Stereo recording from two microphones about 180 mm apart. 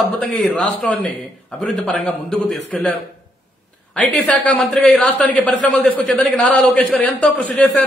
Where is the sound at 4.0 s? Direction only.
5° left (ahead or behind).